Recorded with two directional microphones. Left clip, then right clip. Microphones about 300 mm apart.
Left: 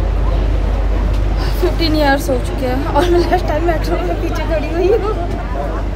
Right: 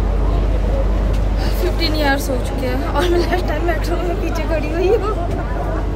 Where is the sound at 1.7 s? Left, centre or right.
Centre.